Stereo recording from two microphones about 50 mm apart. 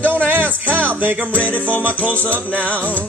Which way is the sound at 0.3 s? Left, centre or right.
Right.